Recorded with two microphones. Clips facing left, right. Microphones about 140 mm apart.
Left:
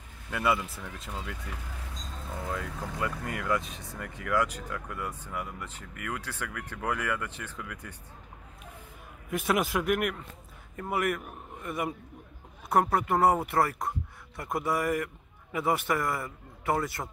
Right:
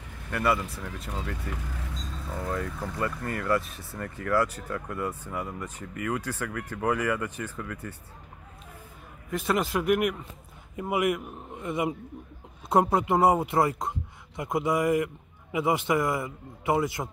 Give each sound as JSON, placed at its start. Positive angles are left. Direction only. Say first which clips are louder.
{"t": 0.4, "sound": "speech", "louder": "right 2 dB", "side_deg": 0}
{"t": 7.8, "sound": "speech", "louder": "right 6 dB", "side_deg": 5}
{"t": 9.3, "sound": "speech", "louder": "right 1 dB", "side_deg": 0}
{"t": 10.8, "sound": "speech", "louder": "right 3 dB", "side_deg": -15}